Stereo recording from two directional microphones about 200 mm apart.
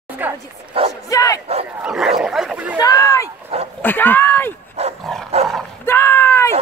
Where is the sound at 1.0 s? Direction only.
15° left (ahead or behind).